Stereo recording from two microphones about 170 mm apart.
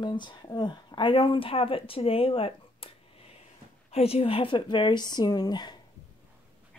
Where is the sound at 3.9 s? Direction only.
35° left (ahead or behind).